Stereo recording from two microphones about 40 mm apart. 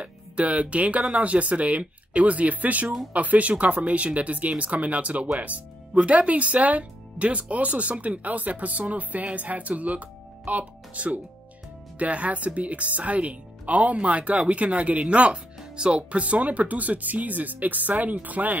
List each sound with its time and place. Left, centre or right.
0.0 s speech: right
8.2 s speech: right